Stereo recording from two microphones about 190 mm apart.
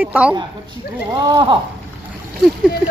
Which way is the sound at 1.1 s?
25° right (ahead or behind).